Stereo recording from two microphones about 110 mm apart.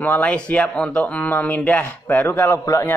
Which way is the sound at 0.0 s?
15° left (ahead or behind).